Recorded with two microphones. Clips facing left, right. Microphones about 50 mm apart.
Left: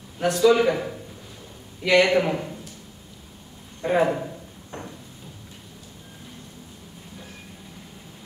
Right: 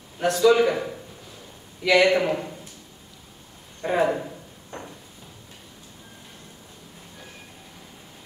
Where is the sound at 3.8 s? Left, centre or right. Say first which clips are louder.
Left 1 dB; centre.